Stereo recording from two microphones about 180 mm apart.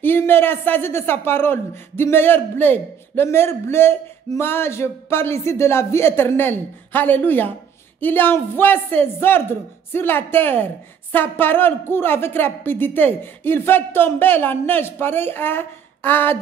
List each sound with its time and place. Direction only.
0.0 s a man's voice: 10° left (ahead or behind)